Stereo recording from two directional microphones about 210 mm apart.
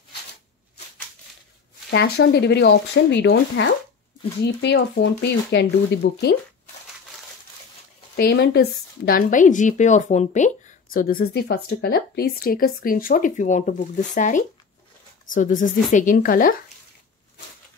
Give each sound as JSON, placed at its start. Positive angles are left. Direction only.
{"t": 1.9, "sound": "speech", "side_deg": 50}
{"t": 8.2, "sound": "speech", "side_deg": 50}